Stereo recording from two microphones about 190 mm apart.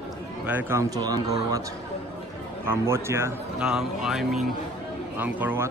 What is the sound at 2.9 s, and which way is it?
Speech, 15° right (ahead or behind).